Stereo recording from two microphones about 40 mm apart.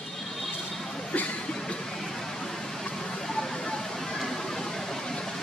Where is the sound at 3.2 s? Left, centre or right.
Centre.